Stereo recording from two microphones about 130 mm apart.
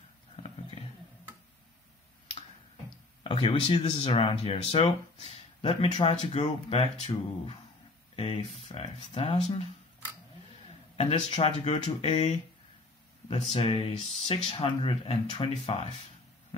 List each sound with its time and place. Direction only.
3.3 s speech: 45° left (ahead or behind)
11.0 s speech: 50° left (ahead or behind)